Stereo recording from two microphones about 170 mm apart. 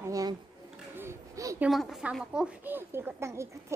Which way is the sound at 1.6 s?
Centre (ahead or behind).